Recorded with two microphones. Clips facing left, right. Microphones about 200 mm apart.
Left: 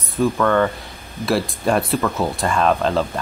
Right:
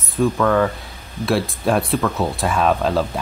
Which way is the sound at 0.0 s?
Centre (ahead or behind).